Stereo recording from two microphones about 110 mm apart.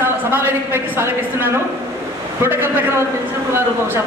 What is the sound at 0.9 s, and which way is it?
A woman's voice, 20° right (ahead or behind).